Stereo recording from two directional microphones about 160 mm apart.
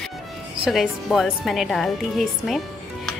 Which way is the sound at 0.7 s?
Centre (ahead or behind).